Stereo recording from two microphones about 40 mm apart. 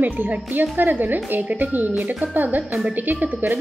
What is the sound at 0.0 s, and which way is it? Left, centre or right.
Speech, right.